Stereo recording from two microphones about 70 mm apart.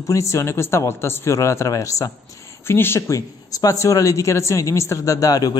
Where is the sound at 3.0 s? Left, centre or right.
Left.